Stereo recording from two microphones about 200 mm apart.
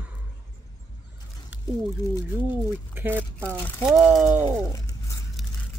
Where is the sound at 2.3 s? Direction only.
10° right (ahead or behind).